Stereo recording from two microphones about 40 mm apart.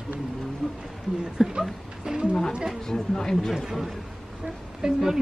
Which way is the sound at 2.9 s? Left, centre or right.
Centre.